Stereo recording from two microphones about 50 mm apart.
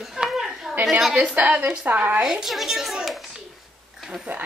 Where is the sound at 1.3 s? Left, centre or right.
Right.